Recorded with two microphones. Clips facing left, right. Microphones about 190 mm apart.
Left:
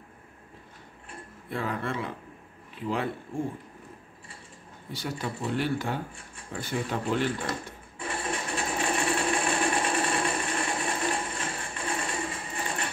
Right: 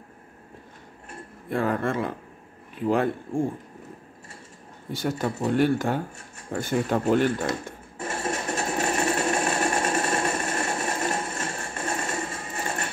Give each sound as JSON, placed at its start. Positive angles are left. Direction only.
{"t": 1.5, "sound": "speech", "side_deg": -50}
{"t": 4.9, "sound": "speech", "side_deg": -45}
{"t": 8.0, "sound": "sewing machine", "side_deg": -45}